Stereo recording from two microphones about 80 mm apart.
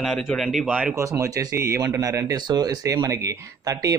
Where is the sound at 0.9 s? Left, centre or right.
Right.